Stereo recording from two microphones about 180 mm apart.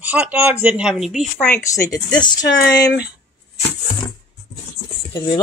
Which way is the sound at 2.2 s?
25° left (ahead or behind).